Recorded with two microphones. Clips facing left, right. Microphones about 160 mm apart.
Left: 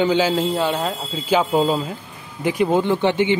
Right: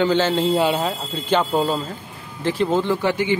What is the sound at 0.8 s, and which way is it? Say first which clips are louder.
Speech: even; 5° left (ahead or behind).